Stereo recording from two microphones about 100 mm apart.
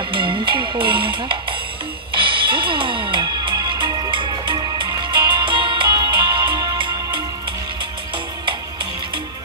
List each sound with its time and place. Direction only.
0.1 s speech: 55° right (ahead or behind)
2.1 s music: 55° right (ahead or behind)
6.8 s music: 55° right (ahead or behind)